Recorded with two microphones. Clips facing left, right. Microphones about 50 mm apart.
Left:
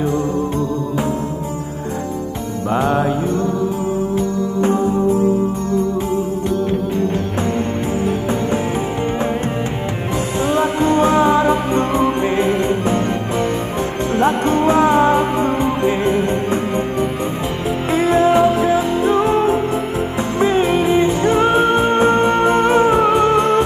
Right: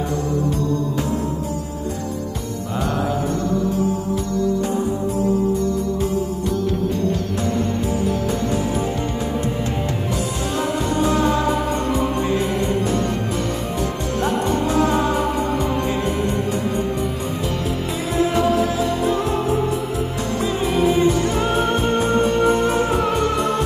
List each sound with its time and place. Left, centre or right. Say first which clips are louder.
2.7 s music: left 7 dB; left
4.1 s music: left 2 dB; left
10.4 s music: left 9 dB; left
17.9 s music: left 11 dB; left
18.3 s music: left 5 dB; left
22.0 s music: left 4 dB; left